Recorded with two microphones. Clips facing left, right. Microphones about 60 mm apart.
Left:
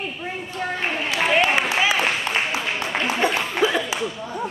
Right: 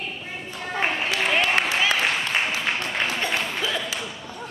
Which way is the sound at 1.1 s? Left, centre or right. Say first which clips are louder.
Left 6 dB; centre.